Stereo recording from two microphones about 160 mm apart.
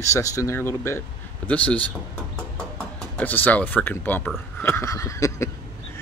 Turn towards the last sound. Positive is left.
turn(degrees=20)  # may be behind; listen again after turning